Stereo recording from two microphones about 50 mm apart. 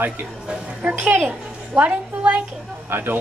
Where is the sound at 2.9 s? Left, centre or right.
Right.